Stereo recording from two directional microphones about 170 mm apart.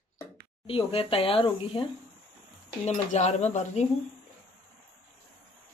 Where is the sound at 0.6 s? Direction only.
30° left (ahead or behind).